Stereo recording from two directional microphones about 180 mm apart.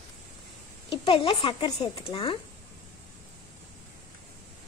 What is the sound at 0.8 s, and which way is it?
Speech, 30° left (ahead or behind).